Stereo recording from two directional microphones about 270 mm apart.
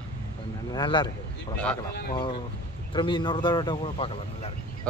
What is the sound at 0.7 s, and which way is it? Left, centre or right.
Speech, centre.